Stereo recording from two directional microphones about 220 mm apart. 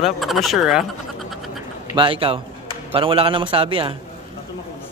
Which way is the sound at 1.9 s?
25° right (ahead or behind).